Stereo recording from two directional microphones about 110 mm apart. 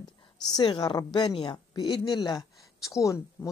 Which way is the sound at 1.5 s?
40° left (ahead or behind).